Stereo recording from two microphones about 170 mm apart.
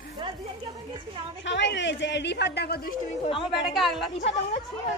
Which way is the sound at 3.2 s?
30° left (ahead or behind).